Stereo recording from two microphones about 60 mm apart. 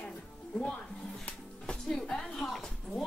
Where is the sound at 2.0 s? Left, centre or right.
Centre.